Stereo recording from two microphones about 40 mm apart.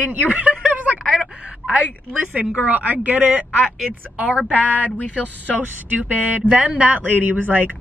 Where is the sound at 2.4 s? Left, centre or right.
Right.